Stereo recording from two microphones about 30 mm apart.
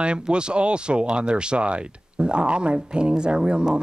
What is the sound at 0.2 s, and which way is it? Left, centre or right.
A woman's voice, right.